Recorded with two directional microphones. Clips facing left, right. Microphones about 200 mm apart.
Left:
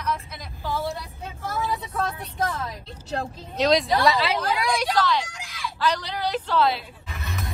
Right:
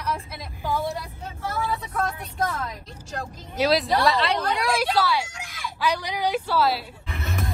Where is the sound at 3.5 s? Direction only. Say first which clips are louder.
Left 1 dB; 5° right (ahead or behind).